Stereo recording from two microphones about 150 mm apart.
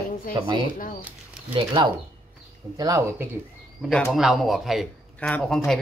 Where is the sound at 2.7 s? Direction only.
20° right (ahead or behind).